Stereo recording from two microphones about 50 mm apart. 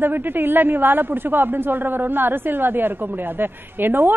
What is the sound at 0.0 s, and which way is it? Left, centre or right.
A woman's voice, right.